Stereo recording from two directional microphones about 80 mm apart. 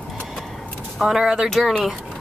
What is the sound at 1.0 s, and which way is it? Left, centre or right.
Speech, centre.